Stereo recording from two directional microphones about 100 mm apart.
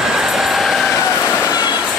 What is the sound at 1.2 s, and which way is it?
Vehicle, 25° left (ahead or behind).